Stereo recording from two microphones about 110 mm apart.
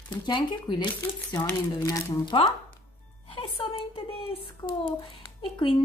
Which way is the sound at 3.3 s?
55° left (ahead or behind).